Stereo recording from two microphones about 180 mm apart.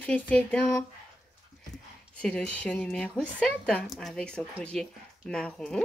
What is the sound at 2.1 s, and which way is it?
A woman's voice, 5° left (ahead or behind).